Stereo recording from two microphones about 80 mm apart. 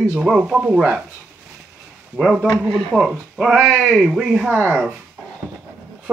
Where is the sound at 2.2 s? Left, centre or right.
Centre.